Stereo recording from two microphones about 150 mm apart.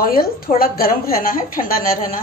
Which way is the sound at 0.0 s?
75° left (ahead or behind).